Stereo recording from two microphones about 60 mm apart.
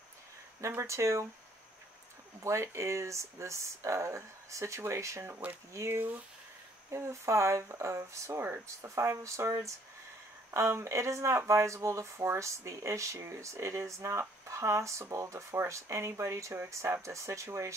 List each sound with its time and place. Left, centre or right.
0.6 s speech: right
2.4 s speech: right
5.3 s speech: right
5.7 s speech: right
10.5 s speech: right